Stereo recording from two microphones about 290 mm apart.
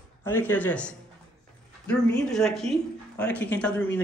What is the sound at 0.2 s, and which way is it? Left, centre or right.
Speech, centre.